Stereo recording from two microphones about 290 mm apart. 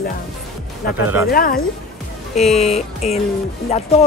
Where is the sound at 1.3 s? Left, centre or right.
Left.